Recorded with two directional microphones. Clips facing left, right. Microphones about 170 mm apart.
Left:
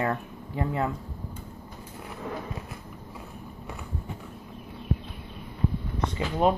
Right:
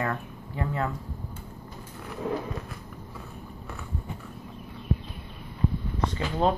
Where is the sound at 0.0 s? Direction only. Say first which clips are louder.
Left 2 dB; 25° left (ahead or behind).